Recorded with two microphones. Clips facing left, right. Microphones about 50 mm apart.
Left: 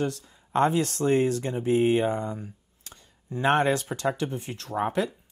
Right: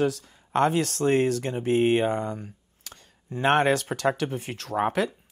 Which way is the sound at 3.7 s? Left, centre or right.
Right.